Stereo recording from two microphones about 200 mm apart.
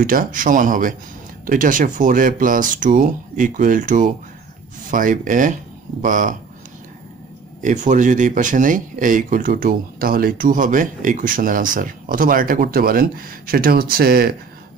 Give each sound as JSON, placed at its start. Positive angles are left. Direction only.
{"t": 0.0, "sound": "speech", "side_deg": -45}
{"t": 7.6, "sound": "speech", "side_deg": -40}